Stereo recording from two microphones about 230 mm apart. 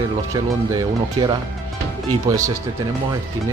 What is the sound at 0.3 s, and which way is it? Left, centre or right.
Speech, centre.